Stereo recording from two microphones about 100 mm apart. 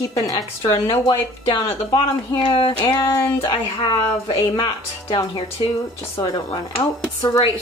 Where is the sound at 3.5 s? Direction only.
50° left (ahead or behind).